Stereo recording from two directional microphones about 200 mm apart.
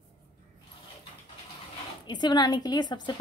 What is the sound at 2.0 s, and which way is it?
Speech, 20° left (ahead or behind).